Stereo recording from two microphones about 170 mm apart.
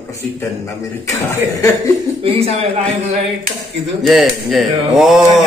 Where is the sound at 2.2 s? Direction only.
35° right (ahead or behind).